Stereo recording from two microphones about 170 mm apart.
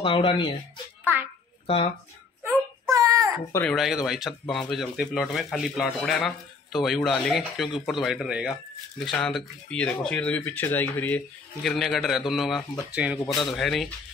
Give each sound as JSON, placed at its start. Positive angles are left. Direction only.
{"t": 0.0, "sound": "speech", "side_deg": 30}
{"t": 2.4, "sound": "a sound", "side_deg": -20}
{"t": 3.7, "sound": "speech", "side_deg": 0}